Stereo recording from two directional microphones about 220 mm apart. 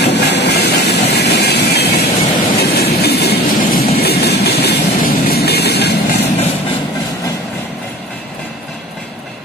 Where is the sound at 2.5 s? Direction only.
45° left (ahead or behind).